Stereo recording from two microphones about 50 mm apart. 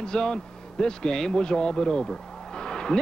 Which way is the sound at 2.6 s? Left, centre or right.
Centre.